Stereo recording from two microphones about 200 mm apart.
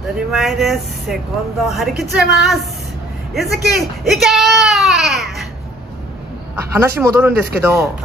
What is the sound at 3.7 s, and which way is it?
Speech, centre (ahead or behind).